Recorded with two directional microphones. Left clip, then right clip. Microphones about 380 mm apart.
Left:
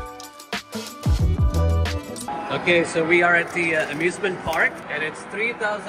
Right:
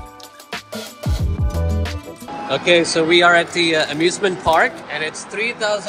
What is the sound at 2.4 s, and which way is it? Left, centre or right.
Speech, centre.